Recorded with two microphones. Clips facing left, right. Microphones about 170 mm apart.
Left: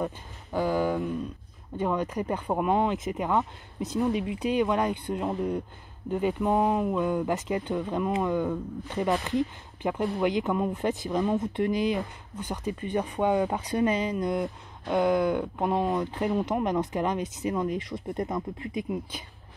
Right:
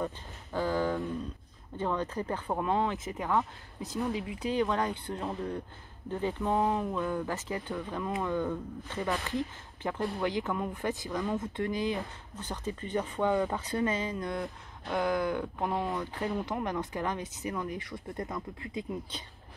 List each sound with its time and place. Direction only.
0.0 s speech: 15° left (ahead or behind)